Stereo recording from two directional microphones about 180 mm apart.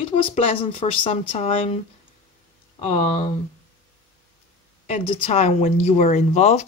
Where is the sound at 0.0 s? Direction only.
35° left (ahead or behind).